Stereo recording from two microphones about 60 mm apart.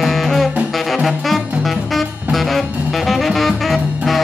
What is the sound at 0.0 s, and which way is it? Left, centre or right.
Saxophone, centre.